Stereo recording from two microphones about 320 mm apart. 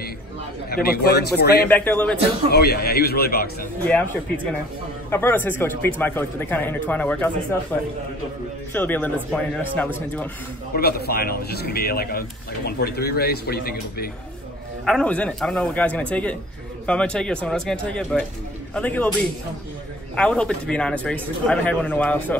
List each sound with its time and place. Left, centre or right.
0.7 s speech: left
1.7 s speech: centre
2.5 s speech: left
3.8 s speech: centre
10.8 s speech: left
14.9 s speech: centre
20.2 s speech: centre